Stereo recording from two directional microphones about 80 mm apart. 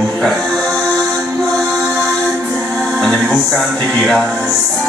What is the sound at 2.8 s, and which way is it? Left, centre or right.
Music, centre.